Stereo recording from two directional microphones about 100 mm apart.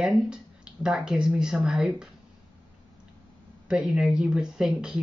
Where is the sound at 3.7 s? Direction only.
5° right (ahead or behind).